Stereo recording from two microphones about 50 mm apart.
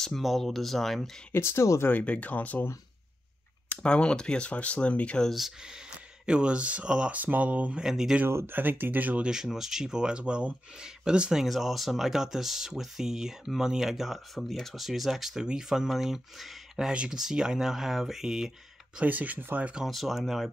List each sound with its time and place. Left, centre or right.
0.2 s speech: centre
1.3 s speech: left
1.9 s speech: left
3.8 s speech: centre
6.2 s speech: centre
7.2 s speech: right
7.8 s speech: centre
8.5 s speech: right
9.2 s speech: centre
11.4 s speech: centre
16.9 s speech: right
19.0 s speech: right
19.8 s speech: centre